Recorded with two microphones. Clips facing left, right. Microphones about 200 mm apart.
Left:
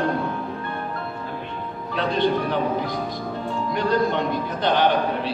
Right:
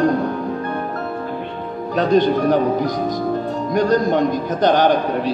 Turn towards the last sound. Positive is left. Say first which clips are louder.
# right 4 dB
turn(degrees=-45)  # may be behind; listen again after turning